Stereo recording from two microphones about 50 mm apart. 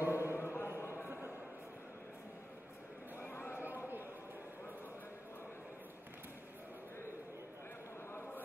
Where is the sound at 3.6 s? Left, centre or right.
Right.